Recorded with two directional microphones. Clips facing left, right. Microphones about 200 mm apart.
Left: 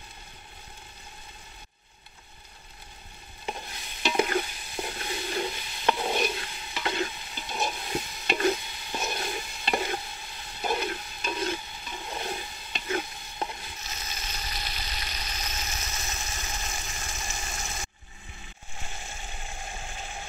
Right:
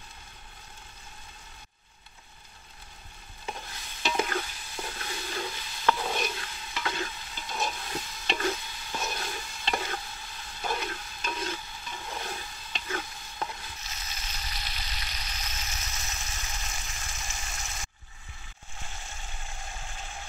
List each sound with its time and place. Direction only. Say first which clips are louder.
3.4 s stir: left 3 dB; 20° left (ahead or behind)
14.3 s vehicle: left 3 dB; 45° left (ahead or behind)
18.9 s a sound: left 3 dB; 15° left (ahead or behind)